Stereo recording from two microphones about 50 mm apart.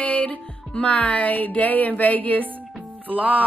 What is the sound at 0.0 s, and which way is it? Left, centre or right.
Music, left.